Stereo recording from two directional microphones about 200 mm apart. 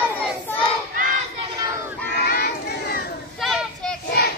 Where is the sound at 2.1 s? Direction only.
50° left (ahead or behind).